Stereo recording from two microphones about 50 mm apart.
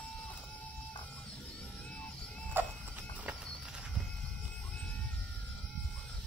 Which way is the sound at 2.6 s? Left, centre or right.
Right.